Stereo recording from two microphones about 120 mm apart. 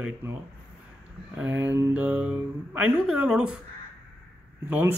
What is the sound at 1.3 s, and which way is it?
Speech, 20° right (ahead or behind).